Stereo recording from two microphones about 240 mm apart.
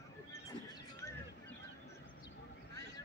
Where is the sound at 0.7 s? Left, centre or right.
Centre.